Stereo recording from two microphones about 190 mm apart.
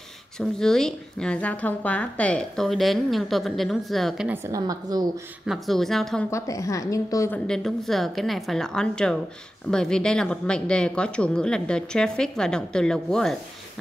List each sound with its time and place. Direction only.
0.4 s a woman's voice: 5° left (ahead or behind)
4.3 s a woman's voice: 15° right (ahead or behind)
5.5 s a woman's voice: centre (ahead or behind)
6.3 s a woman's voice: 15° left (ahead or behind)
7.3 s a woman's voice: 5° left (ahead or behind)